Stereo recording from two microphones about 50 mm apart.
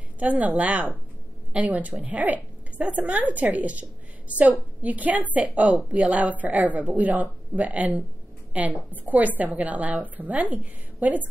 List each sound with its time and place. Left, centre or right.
0.2 s a woman's voice: right